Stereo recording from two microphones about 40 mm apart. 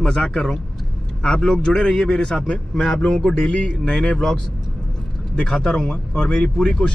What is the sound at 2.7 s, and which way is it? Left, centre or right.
Speech, centre.